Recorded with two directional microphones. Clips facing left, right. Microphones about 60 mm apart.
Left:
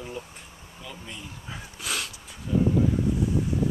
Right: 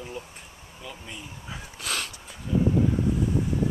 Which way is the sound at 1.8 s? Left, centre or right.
Centre.